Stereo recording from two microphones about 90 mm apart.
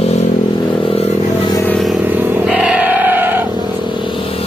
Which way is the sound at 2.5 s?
15° right (ahead or behind).